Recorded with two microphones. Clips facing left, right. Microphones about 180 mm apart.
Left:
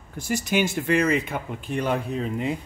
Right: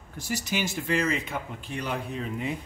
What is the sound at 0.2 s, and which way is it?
Speech, 50° left (ahead or behind).